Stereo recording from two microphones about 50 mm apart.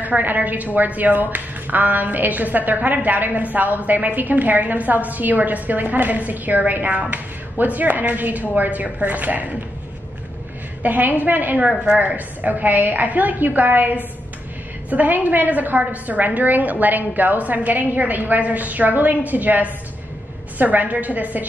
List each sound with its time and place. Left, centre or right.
0.0 s a woman's voice: right
10.8 s a woman's voice: right
11.7 s a woman's voice: centre
12.4 s a woman's voice: right